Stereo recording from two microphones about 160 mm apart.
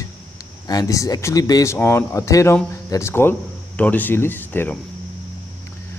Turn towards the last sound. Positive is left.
turn(degrees=10)  # may be behind; listen again after turning